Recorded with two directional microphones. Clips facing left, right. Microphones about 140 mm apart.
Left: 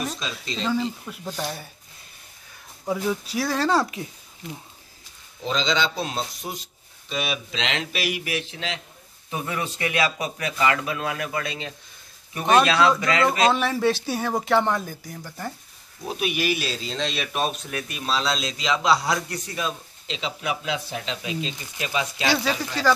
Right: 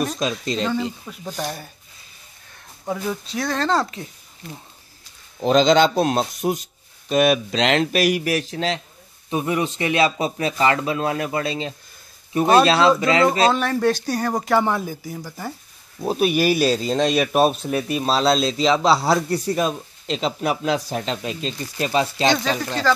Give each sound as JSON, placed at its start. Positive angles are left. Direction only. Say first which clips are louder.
{"t": 0.2, "sound": "a man's voice", "louder": "right 8 dB", "side_deg": -45}
{"t": 0.7, "sound": "speech", "louder": "right 1 dB", "side_deg": 0}
{"t": 2.8, "sound": "speech", "louder": "left 1 dB", "side_deg": 5}
{"t": 5.4, "sound": "a man's voice", "louder": "right 10 dB", "side_deg": -50}
{"t": 9.3, "sound": "speech", "louder": "right 7 dB", "side_deg": -20}
{"t": 13.5, "sound": "speech", "louder": "right 2 dB", "side_deg": 0}
{"t": 16.0, "sound": "speech", "louder": "right 8 dB", "side_deg": -40}
{"t": 22.3, "sound": "speech", "louder": "right 3 dB", "side_deg": 10}